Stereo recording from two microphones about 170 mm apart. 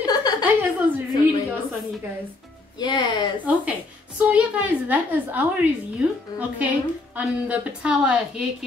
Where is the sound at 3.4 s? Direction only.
10° right (ahead or behind).